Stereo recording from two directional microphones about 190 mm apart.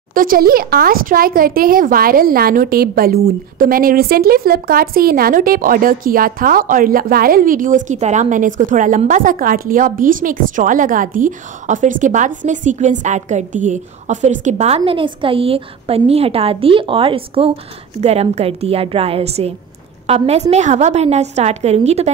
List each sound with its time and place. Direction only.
0.1 s a woman's voice: 45° right (ahead or behind)
14.8 s a woman's voice: 25° right (ahead or behind)